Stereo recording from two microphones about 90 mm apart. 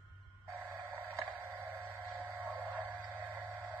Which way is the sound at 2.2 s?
20° right (ahead or behind).